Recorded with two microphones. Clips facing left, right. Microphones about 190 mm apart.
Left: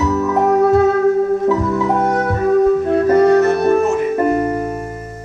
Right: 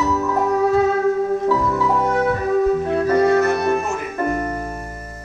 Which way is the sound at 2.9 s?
45° left (ahead or behind).